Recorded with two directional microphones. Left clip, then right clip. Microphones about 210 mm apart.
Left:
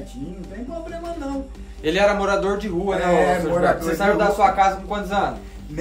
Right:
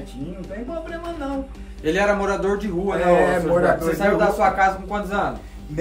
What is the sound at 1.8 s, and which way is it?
Speech, 15° left (ahead or behind).